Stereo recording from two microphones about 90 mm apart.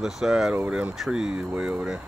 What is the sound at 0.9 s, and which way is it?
Speech, 5° right (ahead or behind).